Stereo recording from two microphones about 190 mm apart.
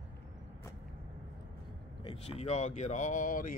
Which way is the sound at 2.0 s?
30° left (ahead or behind).